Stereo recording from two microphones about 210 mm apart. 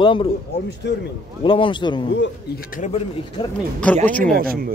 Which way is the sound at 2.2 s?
45° left (ahead or behind).